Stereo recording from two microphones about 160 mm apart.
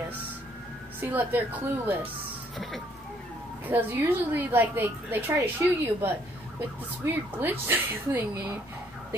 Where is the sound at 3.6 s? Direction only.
10° right (ahead or behind).